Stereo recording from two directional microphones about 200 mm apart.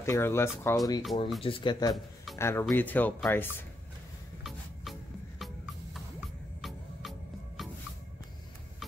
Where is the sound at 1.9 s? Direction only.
Centre (ahead or behind).